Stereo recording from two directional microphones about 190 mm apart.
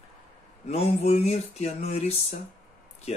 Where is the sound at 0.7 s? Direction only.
30° left (ahead or behind).